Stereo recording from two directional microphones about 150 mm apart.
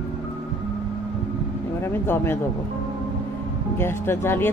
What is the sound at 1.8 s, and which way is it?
Speech, 15° left (ahead or behind).